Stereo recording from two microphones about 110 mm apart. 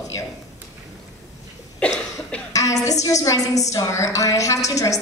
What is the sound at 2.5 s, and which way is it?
A woman's voice, 30° left (ahead or behind).